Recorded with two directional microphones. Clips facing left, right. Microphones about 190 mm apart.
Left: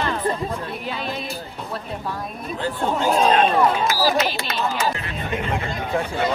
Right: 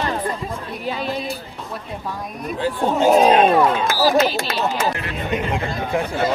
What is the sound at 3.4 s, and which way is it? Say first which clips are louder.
Speech: right 2 dB; 45° right (ahead or behind).